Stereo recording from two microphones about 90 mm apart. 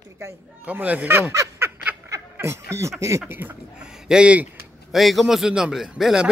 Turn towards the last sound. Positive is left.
turn(degrees=-5)  # may be behind; listen again after turning